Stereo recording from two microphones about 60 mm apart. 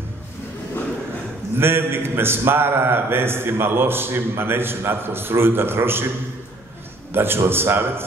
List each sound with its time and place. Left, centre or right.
1.6 s a man's voice: right